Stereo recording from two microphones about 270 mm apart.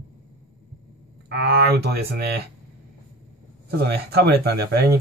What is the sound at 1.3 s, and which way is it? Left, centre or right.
Speech, right.